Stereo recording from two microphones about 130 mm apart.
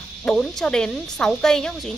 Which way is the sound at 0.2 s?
5° left (ahead or behind).